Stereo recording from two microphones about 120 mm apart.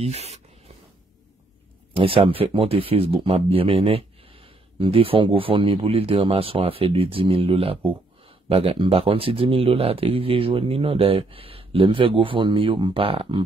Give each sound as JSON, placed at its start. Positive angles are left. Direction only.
{"t": 0.0, "sound": "writing", "side_deg": -60}
{"t": 2.0, "sound": "speech", "side_deg": -50}